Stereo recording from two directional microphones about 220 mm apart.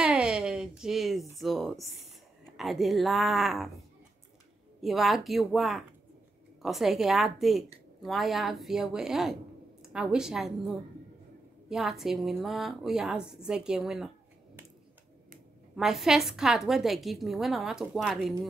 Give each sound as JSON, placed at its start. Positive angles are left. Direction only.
{"t": 0.0, "sound": "a sound", "side_deg": -5}
{"t": 1.3, "sound": "a woman's voice", "side_deg": 0}
{"t": 4.8, "sound": "a woman's voice", "side_deg": 0}
{"t": 15.7, "sound": "a woman's voice", "side_deg": 0}